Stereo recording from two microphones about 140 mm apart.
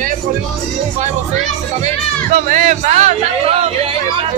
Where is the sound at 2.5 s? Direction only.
60° right (ahead or behind).